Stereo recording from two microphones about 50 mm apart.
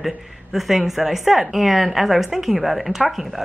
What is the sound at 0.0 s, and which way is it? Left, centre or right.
A woman's voice, centre.